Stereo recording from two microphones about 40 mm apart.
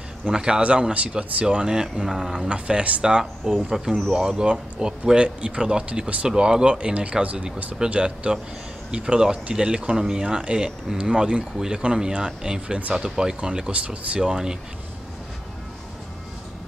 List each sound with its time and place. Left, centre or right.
0.3 s speech: centre
0.9 s speech: right
1.4 s speech: right
2.0 s speech: centre
2.4 s speech: right
3.4 s speech: centre
13.7 s speech: right
14.2 s speech: centre